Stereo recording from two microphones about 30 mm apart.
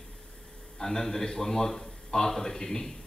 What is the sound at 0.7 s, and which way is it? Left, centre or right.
A man's voice, centre.